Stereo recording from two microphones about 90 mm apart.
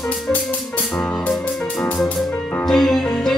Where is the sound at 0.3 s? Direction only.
15° left (ahead or behind).